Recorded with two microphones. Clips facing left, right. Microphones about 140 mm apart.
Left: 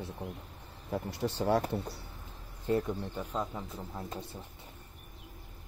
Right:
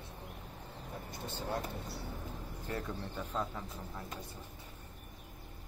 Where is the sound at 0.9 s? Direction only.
75° left (ahead or behind).